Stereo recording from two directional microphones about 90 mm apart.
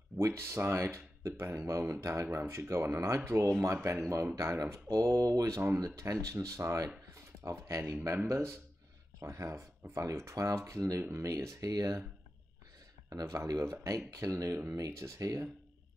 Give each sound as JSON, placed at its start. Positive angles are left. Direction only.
{"t": 0.2, "sound": "speech", "side_deg": -30}
{"t": 7.2, "sound": "a sound", "side_deg": -35}
{"t": 8.0, "sound": "speech", "side_deg": -35}
{"t": 13.1, "sound": "speech", "side_deg": -35}